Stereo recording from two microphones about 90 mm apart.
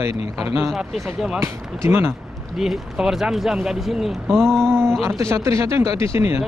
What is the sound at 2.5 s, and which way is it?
Speech, 5° right (ahead or behind).